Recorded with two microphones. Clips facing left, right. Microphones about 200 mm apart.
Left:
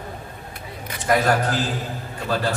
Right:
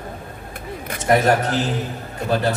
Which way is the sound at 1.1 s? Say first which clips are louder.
Right 3 dB; 25° right (ahead or behind).